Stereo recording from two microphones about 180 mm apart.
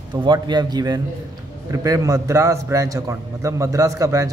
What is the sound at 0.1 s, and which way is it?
A man's voice, 25° right (ahead or behind).